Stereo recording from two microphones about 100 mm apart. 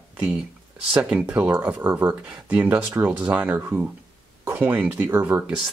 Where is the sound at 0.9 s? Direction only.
10° right (ahead or behind).